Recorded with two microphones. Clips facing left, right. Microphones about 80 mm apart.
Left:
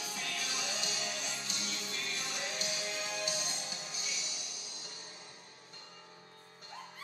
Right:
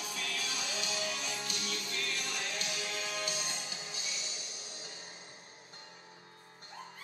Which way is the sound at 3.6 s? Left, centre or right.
Left.